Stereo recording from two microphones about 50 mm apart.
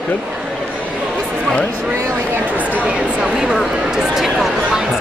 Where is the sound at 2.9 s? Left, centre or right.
Centre.